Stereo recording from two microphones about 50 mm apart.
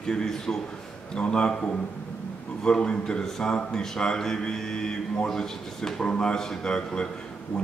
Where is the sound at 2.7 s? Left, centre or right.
Centre.